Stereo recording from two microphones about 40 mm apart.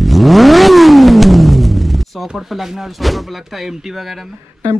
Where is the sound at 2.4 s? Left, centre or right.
Centre.